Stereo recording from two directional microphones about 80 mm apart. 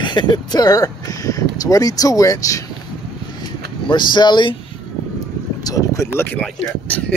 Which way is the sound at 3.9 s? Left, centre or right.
Left.